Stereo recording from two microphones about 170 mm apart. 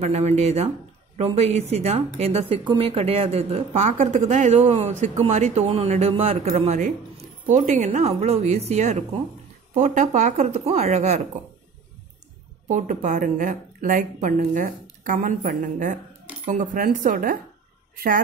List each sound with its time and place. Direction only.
0.0 s a woman's voice: 40° right (ahead or behind)
12.6 s speech: 45° right (ahead or behind)